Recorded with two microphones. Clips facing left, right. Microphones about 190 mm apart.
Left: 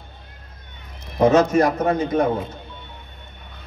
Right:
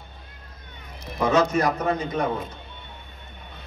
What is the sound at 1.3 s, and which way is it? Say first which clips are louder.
Speech: left 1 dB; 45° left (ahead or behind).